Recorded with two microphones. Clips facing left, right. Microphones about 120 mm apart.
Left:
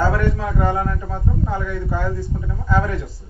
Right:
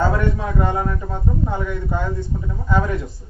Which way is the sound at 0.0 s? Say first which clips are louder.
Even; 25° right (ahead or behind).